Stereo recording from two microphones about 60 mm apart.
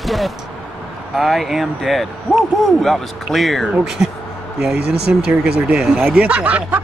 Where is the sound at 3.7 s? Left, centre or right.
Centre.